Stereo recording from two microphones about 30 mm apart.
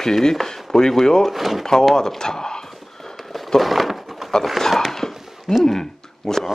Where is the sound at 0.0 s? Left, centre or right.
Centre.